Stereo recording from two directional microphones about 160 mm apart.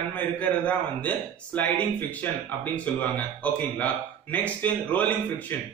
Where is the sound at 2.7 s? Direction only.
10° left (ahead or behind).